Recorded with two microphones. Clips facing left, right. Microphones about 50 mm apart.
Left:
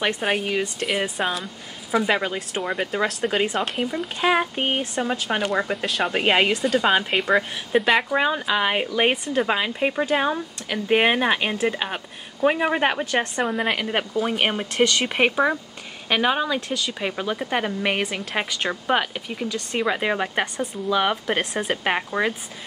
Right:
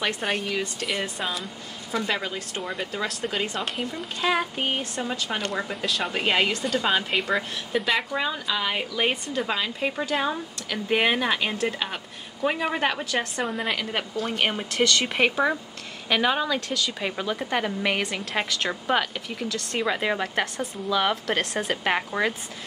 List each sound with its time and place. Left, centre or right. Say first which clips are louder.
0.0 s a woman's voice: left 4 dB; centre
1.9 s a woman's voice: left 6 dB; centre
3.6 s speech: left 4 dB; centre
4.2 s speech: left 3 dB; left
5.9 s speech: left 3 dB; centre
6.1 s speech: left 4 dB; left
6.5 s speech: left 5 dB; centre
6.8 s a woman's voice: left 4 dB; centre
8.2 s a woman's voice: left 6 dB; left; by 22.3 s centre